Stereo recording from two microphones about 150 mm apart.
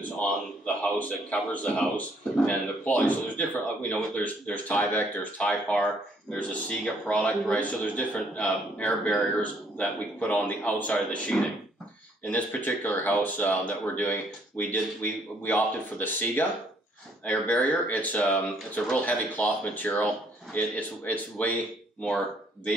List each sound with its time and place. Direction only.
0.9 s a man's voice: 10° left (ahead or behind)